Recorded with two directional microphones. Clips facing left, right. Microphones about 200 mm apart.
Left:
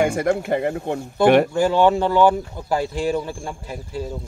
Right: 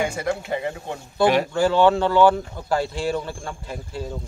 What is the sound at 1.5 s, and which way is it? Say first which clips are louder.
Speech: left 1 dB; 15° left (ahead or behind).